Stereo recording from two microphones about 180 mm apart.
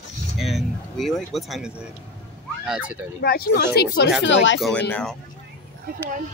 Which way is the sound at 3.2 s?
60° left (ahead or behind).